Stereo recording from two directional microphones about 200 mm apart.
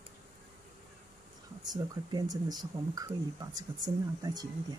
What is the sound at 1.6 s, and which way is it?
Speech, 20° right (ahead or behind).